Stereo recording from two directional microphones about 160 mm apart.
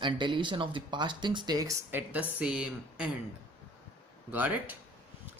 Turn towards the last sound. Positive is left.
turn(degrees=-10)  # may be behind; listen again after turning